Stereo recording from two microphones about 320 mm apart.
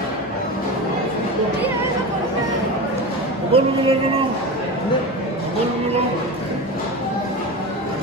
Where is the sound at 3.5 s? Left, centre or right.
Centre.